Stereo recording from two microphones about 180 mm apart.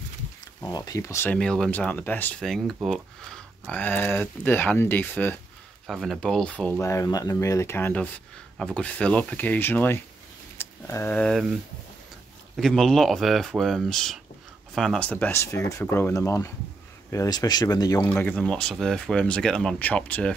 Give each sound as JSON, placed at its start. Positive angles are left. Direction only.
{"t": 0.7, "sound": "speech", "side_deg": 20}
{"t": 12.5, "sound": "speech", "side_deg": 0}
{"t": 18.0, "sound": "speech", "side_deg": 5}